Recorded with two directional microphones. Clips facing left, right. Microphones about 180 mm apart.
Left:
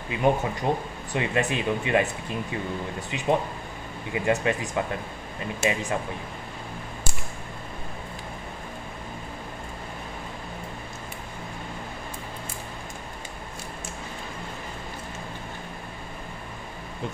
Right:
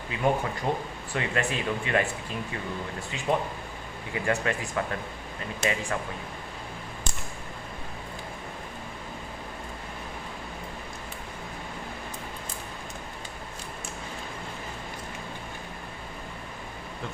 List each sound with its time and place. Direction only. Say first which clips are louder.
0.1 s speech: left 3 dB; 20° left (ahead or behind)
3.1 s speech: left 3 dB; 20° left (ahead or behind)
7.1 s a sound: left 1 dB; 10° left (ahead or behind)